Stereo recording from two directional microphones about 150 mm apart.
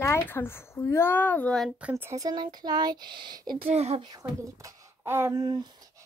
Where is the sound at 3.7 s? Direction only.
45° right (ahead or behind).